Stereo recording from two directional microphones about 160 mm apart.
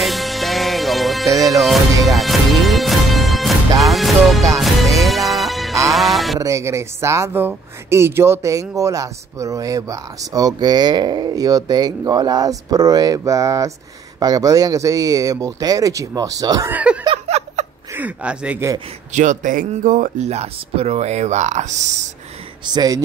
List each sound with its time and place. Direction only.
0.0 s music: centre (ahead or behind)
6.4 s speech: 20° right (ahead or behind)
16.7 s speech: 5° right (ahead or behind)
17.0 s a sound: 40° right (ahead or behind)
17.9 s speech: 10° right (ahead or behind)
19.1 s speech: 50° right (ahead or behind)
22.7 s speech: 25° right (ahead or behind)